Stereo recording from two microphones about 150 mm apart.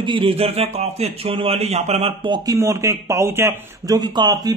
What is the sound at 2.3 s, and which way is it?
Speech, 20° right (ahead or behind).